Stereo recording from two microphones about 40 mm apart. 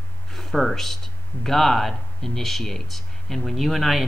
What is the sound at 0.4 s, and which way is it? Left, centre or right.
Speech, centre.